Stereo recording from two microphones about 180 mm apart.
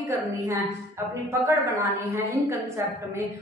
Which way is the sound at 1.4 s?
15° right (ahead or behind).